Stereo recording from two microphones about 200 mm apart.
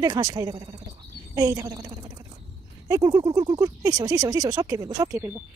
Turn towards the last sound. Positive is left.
turn(degrees=-10)  # may be behind; listen again after turning